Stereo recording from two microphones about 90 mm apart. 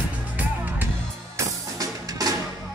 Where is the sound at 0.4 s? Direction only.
20° right (ahead or behind).